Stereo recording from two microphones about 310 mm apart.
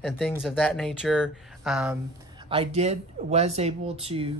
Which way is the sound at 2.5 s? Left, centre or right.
Centre.